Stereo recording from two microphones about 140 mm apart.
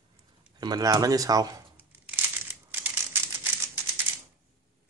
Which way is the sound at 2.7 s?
15° right (ahead or behind).